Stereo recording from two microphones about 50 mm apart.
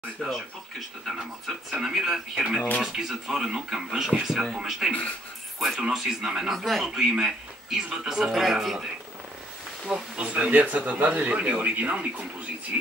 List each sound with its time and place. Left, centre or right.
0.3 s speech: centre
1.1 s speech: centre
6.5 s speech: centre
6.9 s speech: centre
9.8 s speech: right